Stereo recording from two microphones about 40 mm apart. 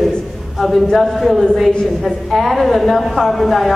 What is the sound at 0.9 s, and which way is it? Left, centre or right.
Speech, centre.